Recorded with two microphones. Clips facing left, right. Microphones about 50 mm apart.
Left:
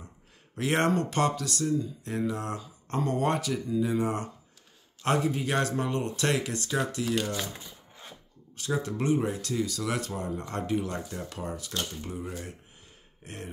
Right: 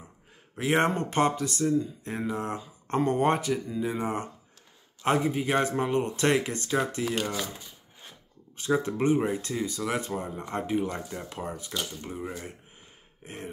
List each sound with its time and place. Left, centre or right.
0.6 s speech: centre; by 7.3 s right
8.8 s speech: right
13.2 s throat clearing: centre